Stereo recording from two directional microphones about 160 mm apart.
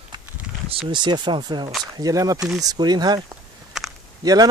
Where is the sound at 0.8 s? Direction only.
30° right (ahead or behind).